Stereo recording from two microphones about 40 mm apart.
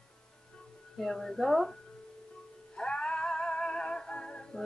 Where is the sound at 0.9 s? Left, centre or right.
Centre.